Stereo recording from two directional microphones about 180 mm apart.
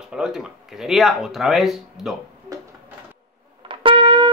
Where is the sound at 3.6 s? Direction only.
30° right (ahead or behind).